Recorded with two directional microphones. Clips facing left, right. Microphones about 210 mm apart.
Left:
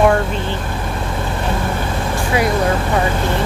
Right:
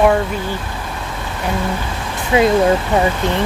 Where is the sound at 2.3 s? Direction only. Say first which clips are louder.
Right 5 dB; 25° right (ahead or behind).